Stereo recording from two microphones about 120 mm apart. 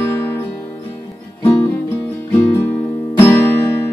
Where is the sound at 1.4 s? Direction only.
20° left (ahead or behind).